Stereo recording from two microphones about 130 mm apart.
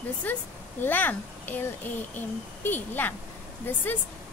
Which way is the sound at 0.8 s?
15° left (ahead or behind).